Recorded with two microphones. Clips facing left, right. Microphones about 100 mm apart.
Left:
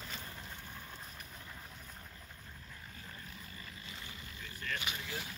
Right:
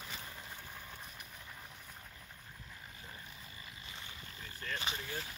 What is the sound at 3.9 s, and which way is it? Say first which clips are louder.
Boat: left 1 dB; 25° right (ahead or behind).